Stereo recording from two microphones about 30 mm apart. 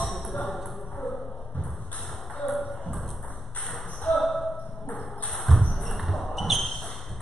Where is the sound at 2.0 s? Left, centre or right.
Centre.